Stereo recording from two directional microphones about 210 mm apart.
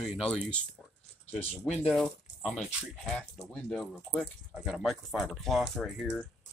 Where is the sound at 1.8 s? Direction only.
Centre (ahead or behind).